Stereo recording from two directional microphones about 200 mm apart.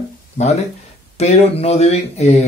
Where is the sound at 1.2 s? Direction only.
30° left (ahead or behind).